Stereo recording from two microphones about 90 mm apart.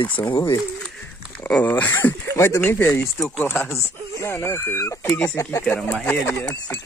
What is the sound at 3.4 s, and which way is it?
Speech, 30° left (ahead or behind).